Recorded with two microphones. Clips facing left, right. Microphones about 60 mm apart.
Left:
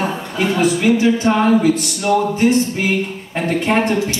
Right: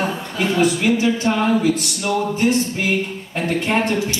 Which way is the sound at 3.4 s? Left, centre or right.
Centre.